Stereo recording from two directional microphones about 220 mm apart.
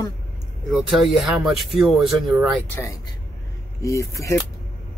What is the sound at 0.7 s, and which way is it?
Speech, centre (ahead or behind).